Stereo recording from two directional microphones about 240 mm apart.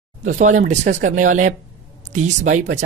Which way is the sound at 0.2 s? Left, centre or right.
Right.